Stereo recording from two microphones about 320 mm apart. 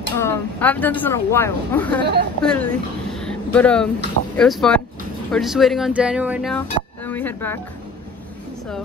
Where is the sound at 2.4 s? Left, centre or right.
Centre.